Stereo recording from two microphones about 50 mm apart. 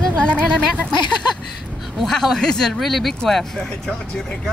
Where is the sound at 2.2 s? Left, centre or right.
Centre.